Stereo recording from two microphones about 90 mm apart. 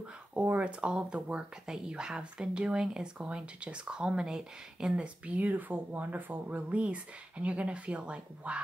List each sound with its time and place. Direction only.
0.4 s speech: 15° right (ahead or behind)